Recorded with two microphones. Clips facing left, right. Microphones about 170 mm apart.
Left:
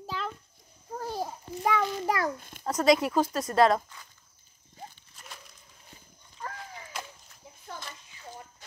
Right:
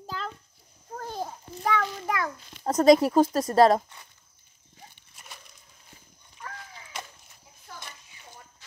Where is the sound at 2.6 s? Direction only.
45° right (ahead or behind).